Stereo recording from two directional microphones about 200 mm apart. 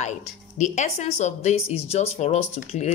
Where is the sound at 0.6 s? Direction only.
35° left (ahead or behind).